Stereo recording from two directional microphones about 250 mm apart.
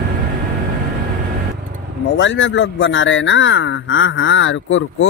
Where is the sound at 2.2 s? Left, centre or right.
Left.